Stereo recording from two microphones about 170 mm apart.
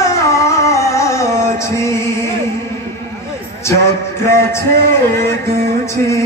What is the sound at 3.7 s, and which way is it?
Music, 15° left (ahead or behind).